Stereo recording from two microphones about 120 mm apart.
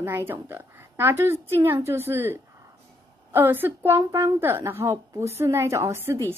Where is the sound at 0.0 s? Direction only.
20° right (ahead or behind).